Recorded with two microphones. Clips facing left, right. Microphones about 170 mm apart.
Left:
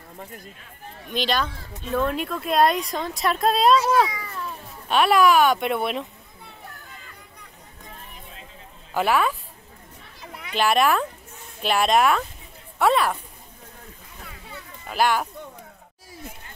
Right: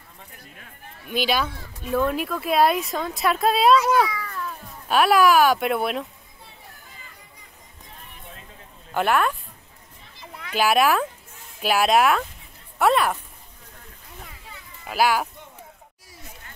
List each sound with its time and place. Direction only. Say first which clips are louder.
1.1 s speech: right 1 dB; 5° right (ahead or behind)
3.7 s a child's voice: right 1 dB; 30° left (ahead or behind)
4.1 s cat: right 2 dB; 20° left (ahead or behind)
4.8 s speech: even; centre (ahead or behind)
8.9 s speech: even; centre (ahead or behind)
10.5 s speech: right 1 dB; 5° right (ahead or behind)
14.9 s speech: right 1 dB; 5° right (ahead or behind)